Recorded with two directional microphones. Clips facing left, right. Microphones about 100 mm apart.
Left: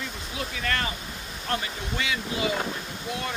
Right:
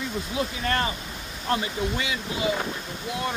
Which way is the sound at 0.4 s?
25° right (ahead or behind).